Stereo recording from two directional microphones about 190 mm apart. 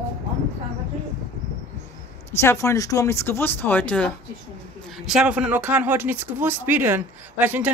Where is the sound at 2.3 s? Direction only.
15° left (ahead or behind).